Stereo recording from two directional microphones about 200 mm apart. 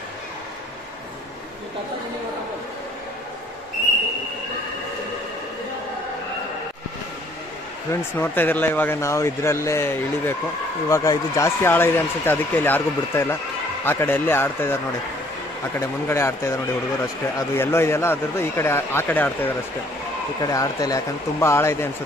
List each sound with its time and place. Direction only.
7.9 s speech: 10° left (ahead or behind)
15.8 s speech: 15° left (ahead or behind)